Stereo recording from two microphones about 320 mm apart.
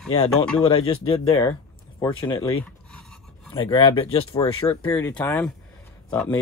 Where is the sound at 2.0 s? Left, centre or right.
Centre.